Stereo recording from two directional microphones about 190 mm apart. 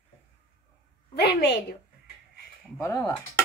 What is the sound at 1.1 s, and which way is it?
Speech, 60° left (ahead or behind).